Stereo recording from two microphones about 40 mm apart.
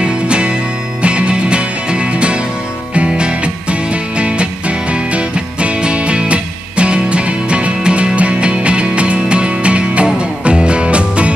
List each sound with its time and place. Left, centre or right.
0.0 s music: right